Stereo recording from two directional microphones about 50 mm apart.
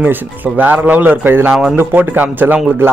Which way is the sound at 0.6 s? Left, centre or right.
Right.